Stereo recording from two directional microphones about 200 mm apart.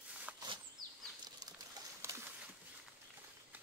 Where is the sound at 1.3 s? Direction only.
20° right (ahead or behind).